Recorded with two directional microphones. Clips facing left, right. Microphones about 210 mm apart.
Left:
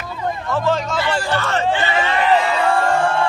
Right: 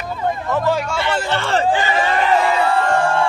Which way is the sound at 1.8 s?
40° right (ahead or behind).